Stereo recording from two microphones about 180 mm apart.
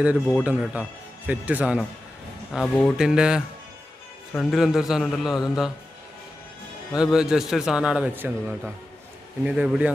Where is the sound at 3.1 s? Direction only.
5° right (ahead or behind).